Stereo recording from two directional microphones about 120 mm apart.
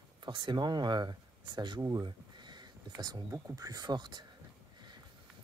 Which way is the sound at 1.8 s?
30° right (ahead or behind).